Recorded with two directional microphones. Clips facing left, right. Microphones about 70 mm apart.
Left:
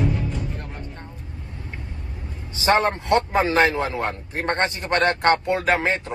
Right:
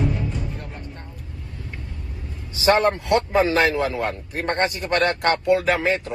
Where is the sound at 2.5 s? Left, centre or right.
Left.